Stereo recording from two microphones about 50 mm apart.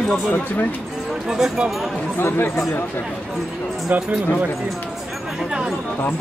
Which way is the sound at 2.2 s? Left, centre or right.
Left.